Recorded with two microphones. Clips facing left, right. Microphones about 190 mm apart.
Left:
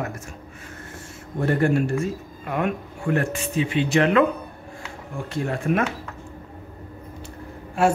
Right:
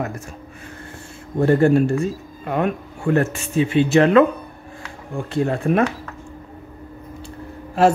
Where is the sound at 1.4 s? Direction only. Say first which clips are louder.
Right 6 dB; 35° right (ahead or behind).